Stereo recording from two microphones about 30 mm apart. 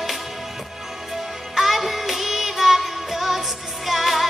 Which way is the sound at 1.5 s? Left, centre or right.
Centre.